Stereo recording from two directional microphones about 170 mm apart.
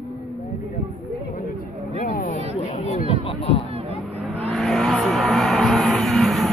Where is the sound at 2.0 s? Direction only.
55° left (ahead or behind).